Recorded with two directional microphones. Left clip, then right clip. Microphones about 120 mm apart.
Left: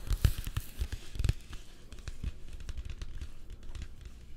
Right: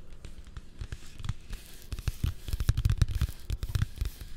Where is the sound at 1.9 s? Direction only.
20° right (ahead or behind).